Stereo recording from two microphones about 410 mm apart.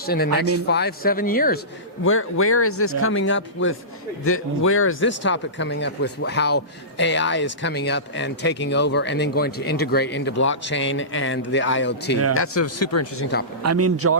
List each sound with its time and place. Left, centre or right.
0.0 s speech: left
13.6 s speech: right